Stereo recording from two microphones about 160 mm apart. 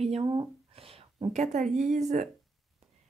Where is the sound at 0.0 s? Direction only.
40° right (ahead or behind).